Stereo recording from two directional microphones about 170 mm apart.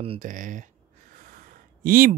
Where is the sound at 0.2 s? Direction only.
50° right (ahead or behind).